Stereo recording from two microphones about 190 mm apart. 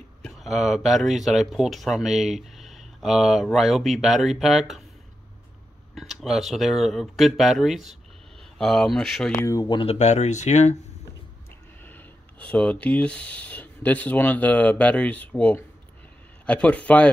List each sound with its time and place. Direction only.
0.2 s speech: centre (ahead or behind)
5.9 s speech: centre (ahead or behind)
9.4 s speech: 20° left (ahead or behind); by 10.8 s 35° left (ahead or behind)
11.8 s speech: 10° left (ahead or behind)